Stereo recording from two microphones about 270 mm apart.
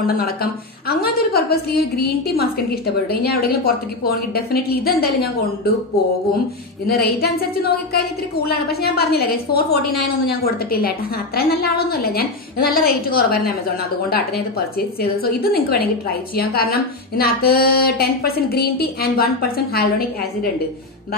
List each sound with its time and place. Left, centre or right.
0.0 s a woman's voice: left
6.9 s a woman's voice: left